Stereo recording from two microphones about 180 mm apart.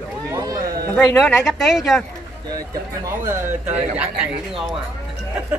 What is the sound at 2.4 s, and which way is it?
Speech, 20° right (ahead or behind).